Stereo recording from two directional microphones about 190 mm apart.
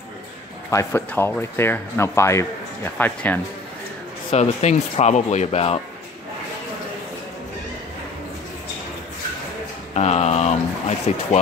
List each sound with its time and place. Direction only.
0.7 s speech: 15° left (ahead or behind)
4.3 s speech: 35° left (ahead or behind)
9.9 s speech: 35° left (ahead or behind)